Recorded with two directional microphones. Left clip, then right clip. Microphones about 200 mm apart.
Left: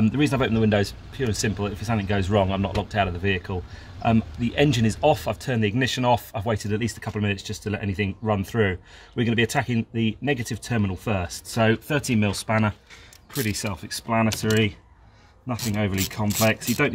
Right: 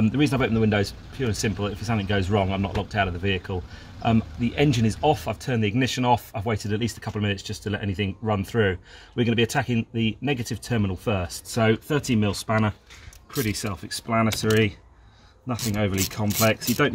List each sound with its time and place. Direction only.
0.0 s speech: 20° left (ahead or behind)